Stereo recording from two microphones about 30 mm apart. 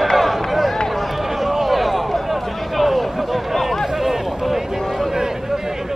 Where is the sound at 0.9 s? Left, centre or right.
Centre.